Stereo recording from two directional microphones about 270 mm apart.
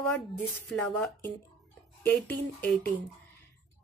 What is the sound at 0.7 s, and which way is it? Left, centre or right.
A woman's voice, centre.